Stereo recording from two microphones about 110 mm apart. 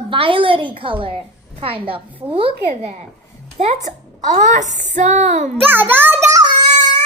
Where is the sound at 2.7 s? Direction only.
90° right.